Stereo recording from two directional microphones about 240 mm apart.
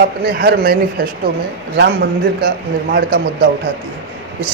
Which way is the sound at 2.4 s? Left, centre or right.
Right.